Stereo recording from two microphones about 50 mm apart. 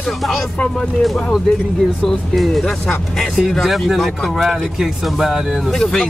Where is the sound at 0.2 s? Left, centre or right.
Centre.